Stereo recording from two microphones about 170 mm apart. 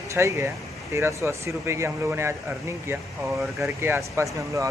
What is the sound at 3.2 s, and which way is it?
Speech, centre (ahead or behind).